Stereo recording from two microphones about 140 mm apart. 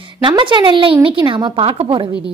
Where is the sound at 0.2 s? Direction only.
35° right (ahead or behind).